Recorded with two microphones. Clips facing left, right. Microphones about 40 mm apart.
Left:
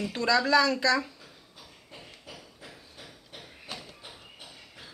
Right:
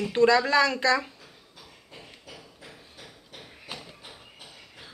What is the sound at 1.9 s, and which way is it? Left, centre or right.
Hammer, centre.